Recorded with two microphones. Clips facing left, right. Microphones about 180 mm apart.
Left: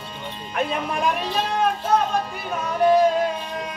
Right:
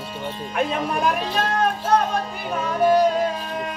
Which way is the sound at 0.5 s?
Centre (ahead or behind).